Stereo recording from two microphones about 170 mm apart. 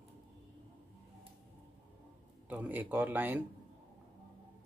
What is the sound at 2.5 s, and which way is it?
Speech, 10° right (ahead or behind).